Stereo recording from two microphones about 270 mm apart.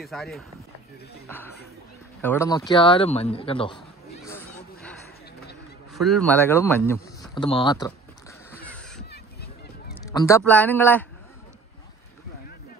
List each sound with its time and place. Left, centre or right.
0.0 s speech: centre
2.2 s speech: centre
5.9 s speech: centre
8.5 s a sound: centre
9.1 s a sound: left
10.0 s speech: centre